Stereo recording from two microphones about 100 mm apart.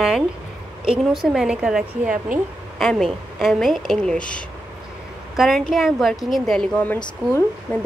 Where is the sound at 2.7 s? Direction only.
5° left (ahead or behind).